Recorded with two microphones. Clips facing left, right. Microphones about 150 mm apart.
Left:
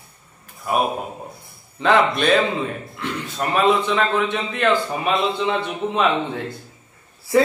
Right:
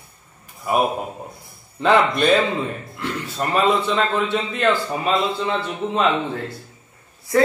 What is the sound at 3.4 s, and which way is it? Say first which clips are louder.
A man's voice: left 1 dB; centre (ahead or behind).